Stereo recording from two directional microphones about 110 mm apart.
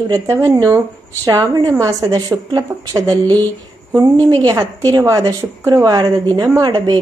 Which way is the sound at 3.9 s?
35° right (ahead or behind).